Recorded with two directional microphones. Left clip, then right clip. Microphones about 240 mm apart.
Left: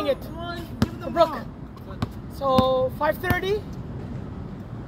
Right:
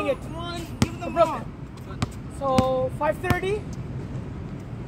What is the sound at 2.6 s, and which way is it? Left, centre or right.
Speech, left.